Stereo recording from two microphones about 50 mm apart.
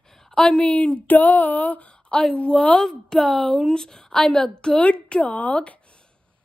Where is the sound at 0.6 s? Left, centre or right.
Left.